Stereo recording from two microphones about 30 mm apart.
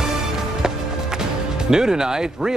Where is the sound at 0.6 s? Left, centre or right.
Right.